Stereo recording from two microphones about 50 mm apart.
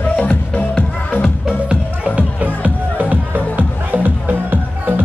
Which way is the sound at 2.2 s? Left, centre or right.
Right.